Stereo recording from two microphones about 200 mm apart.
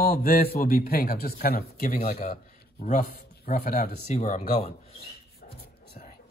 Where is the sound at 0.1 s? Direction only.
45° left (ahead or behind).